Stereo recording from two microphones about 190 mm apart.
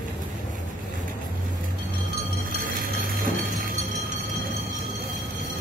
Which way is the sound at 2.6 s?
50° right (ahead or behind).